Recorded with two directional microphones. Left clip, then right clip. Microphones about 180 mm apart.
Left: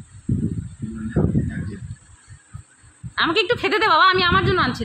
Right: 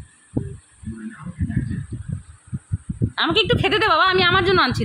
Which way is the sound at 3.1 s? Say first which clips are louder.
Even; centre (ahead or behind).